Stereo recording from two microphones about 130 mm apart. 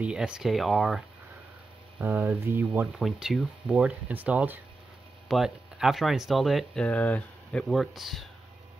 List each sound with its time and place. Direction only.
0.0 s speech: 5° right (ahead or behind)
2.0 s speech: 15° right (ahead or behind)
3.0 s speech: 5° right (ahead or behind)
7.6 s speech: centre (ahead or behind)